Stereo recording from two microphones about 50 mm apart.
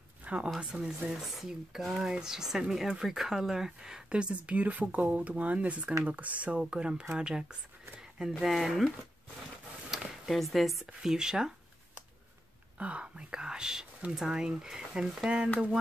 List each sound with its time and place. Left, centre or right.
0.2 s a sound: right
0.6 s speech: right
1.1 s speech: centre
4.1 s speech: right; by 8.9 s centre
9.8 s a sound: centre
11.0 s speech: centre
12.7 s speech: right